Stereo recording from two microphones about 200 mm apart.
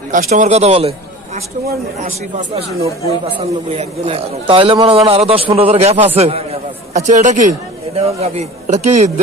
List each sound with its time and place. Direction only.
0.1 s a man's voice: 40° right (ahead or behind)